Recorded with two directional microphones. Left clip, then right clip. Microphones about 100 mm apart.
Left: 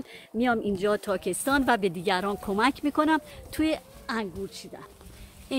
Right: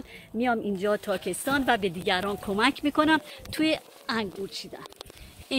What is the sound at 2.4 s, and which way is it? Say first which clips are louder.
Speech: right 1 dB; 5° left (ahead or behind).